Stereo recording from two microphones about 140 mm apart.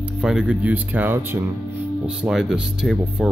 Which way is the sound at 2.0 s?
5° right (ahead or behind).